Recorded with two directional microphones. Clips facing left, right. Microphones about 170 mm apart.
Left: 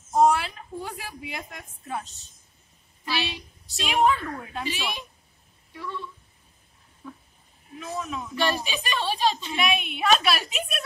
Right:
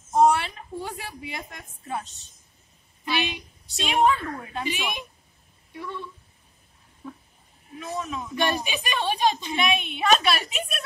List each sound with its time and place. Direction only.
0.1 s a woman's voice: centre (ahead or behind)
3.1 s speech: 15° right (ahead or behind)
3.6 s a woman's voice: centre (ahead or behind)
4.6 s speech: 15° right (ahead or behind)
7.8 s a woman's voice: centre (ahead or behind)
8.4 s speech: 15° right (ahead or behind)
9.6 s a woman's voice: 5° left (ahead or behind)